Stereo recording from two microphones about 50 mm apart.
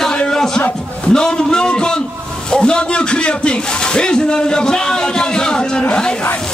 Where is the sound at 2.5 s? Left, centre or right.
Centre.